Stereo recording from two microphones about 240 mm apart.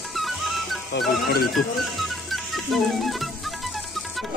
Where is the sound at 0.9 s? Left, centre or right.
Left.